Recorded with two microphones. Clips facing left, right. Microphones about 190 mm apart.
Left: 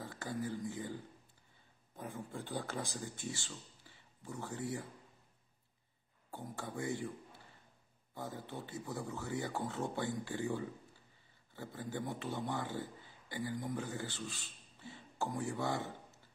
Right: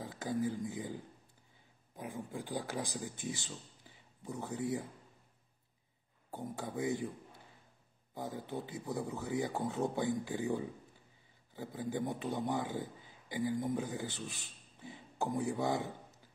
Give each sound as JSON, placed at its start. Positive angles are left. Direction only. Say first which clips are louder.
{"t": 0.0, "sound": "speech", "louder": "right 5 dB", "side_deg": -20}
{"t": 2.0, "sound": "speech", "louder": "right 2 dB", "side_deg": -10}
{"t": 6.3, "sound": "speech", "louder": "right 4 dB", "side_deg": -20}
{"t": 8.1, "sound": "speech", "louder": "right 4 dB", "side_deg": -20}